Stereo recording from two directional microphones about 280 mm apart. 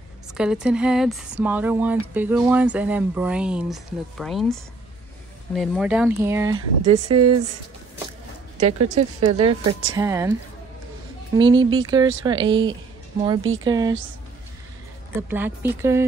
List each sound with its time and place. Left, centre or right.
0.3 s speech: centre
6.9 s speech: right
8.5 s speech: right
9.2 s a woman's voice: centre
11.3 s speech: centre
15.1 s speech: centre